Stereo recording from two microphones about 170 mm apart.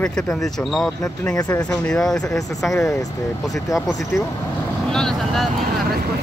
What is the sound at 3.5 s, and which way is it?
Speech, centre (ahead or behind).